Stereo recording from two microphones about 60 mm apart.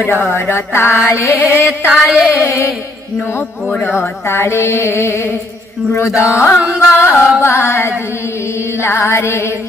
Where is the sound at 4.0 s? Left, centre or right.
Left.